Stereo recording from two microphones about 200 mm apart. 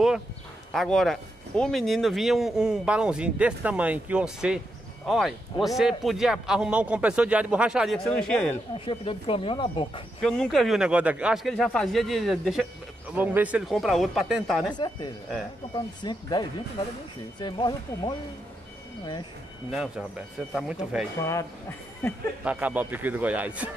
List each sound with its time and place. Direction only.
0.7 s speech: centre (ahead or behind)
8.7 s speech: 25° left (ahead or behind)
10.2 s speech: 5° left (ahead or behind)
14.7 s speech: 20° left (ahead or behind)
19.7 s speech: centre (ahead or behind)
21.2 s speech: 15° left (ahead or behind)
22.4 s a man's voice: 5° right (ahead or behind)